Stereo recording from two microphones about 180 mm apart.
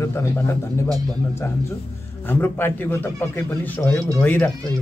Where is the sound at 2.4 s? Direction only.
10° left (ahead or behind).